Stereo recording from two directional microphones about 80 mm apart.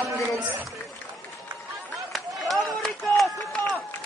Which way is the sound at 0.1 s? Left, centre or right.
Right.